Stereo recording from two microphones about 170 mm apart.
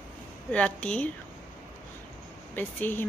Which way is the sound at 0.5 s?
10° left (ahead or behind).